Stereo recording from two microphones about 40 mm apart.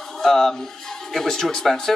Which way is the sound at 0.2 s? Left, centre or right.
Centre.